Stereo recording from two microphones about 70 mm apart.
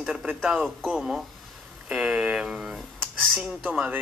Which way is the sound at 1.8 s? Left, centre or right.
Centre.